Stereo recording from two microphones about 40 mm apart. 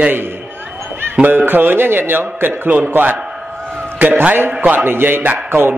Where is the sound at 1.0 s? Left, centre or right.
Right.